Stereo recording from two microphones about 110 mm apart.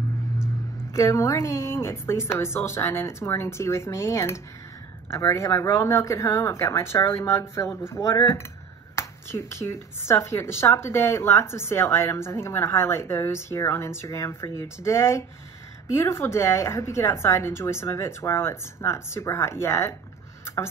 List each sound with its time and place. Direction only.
0.9 s speech: 25° left (ahead or behind)